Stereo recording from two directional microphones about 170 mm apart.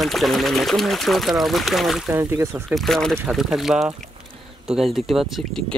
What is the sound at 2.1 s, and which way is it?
Speech, 15° right (ahead or behind).